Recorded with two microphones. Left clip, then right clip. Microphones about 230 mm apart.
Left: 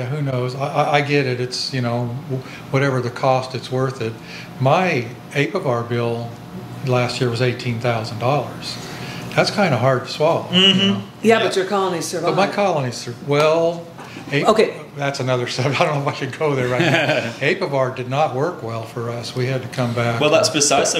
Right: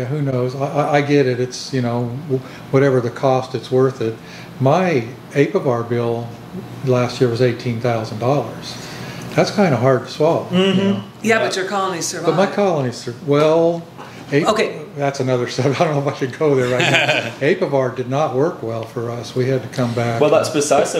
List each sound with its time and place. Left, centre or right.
0.3 s speech: left
10.5 s speech: left
11.2 s speech: right
12.3 s speech: left
14.4 s speech: right
15.0 s speech: left
16.6 s a man's voice: right
17.4 s speech: left
20.2 s speech: left